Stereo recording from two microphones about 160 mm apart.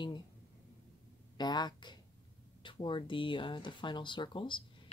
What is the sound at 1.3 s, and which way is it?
Speech, 25° left (ahead or behind).